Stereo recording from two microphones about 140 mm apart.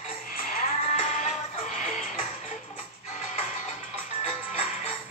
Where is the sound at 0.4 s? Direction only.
65° left (ahead or behind).